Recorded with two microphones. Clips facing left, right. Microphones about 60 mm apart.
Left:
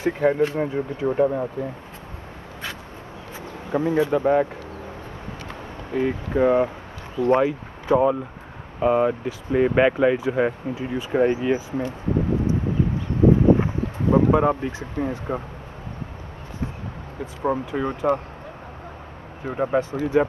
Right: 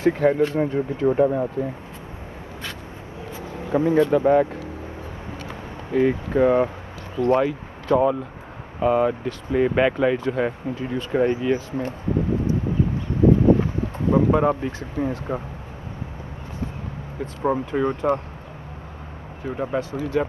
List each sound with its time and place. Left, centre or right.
0.0 s speech: centre
3.7 s speech: centre
5.9 s speech: centre
7.2 s speech: centre
14.1 s speech: centre
17.4 s speech: centre
19.4 s speech: centre